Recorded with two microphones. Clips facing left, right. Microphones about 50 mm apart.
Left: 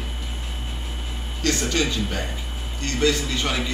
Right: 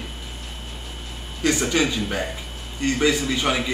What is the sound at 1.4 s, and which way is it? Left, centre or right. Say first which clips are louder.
A man's voice: right 2 dB; centre.